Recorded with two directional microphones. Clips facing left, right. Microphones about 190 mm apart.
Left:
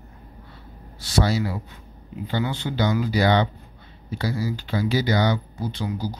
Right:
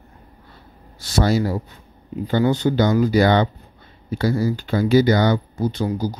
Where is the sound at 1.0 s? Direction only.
45° right (ahead or behind).